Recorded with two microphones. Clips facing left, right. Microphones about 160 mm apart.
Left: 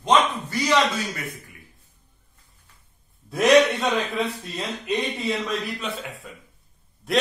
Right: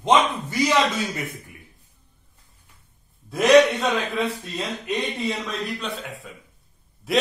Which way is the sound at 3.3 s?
Centre (ahead or behind).